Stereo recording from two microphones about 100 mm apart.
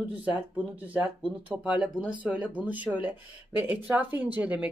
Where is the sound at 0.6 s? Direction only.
15° right (ahead or behind).